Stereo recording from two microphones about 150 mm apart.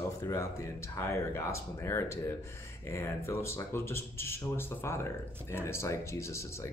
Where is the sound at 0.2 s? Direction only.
20° left (ahead or behind).